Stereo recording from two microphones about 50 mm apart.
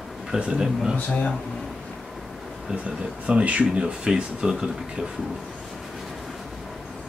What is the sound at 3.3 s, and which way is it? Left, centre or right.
Speech, right.